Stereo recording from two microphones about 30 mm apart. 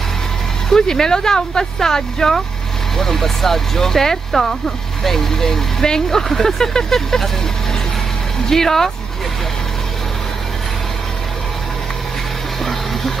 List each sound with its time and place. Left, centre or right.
0.7 s speech: centre
8.5 s speech: centre